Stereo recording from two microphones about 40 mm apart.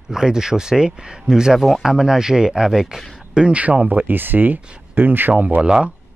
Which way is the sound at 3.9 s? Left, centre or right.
Right.